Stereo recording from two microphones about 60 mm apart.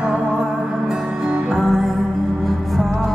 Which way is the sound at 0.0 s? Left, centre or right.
Centre.